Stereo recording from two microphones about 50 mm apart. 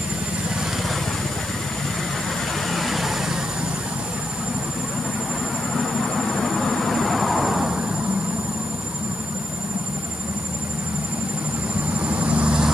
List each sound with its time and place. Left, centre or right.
2.7 s vehicle: centre
5.9 s vehicle: centre
12.0 s vehicle: right